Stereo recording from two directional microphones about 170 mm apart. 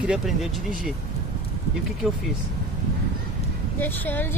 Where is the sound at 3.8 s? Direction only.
10° left (ahead or behind).